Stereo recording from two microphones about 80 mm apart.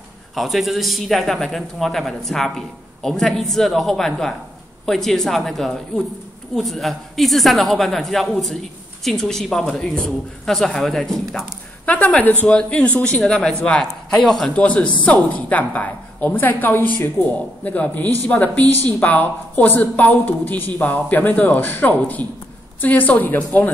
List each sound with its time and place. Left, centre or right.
0.4 s speech: centre
11.8 s speech: centre
14.5 s a woman's voice: centre